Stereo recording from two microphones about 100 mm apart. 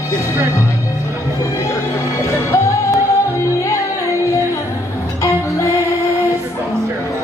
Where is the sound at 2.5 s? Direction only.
30° left (ahead or behind).